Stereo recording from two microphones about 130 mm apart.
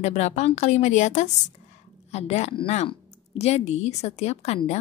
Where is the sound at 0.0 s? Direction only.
60° left (ahead or behind).